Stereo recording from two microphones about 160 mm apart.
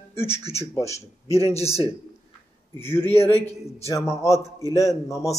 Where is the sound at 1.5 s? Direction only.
40° left (ahead or behind).